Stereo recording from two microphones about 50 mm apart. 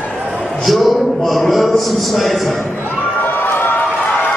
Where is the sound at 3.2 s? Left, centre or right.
Left.